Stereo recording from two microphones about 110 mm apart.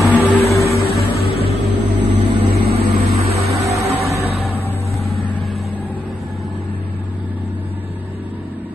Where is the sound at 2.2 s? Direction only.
65° right (ahead or behind).